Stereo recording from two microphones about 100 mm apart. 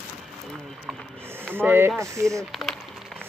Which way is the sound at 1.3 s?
20° right (ahead or behind).